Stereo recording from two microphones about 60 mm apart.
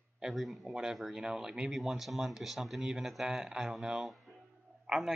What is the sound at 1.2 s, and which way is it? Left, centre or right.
Speech, centre.